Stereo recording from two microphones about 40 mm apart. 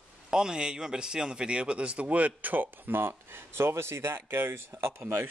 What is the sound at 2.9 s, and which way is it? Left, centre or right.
Speech, right.